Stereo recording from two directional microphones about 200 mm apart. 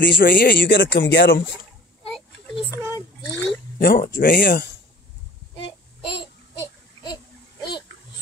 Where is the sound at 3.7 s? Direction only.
50° left (ahead or behind).